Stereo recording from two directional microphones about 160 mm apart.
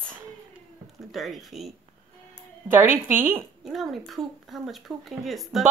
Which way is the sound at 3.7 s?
Centre (ahead or behind).